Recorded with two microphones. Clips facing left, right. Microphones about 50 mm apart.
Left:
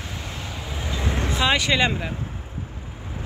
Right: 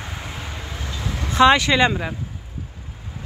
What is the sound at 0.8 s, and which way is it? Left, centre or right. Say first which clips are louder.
Vehicle: left 3 dB; centre.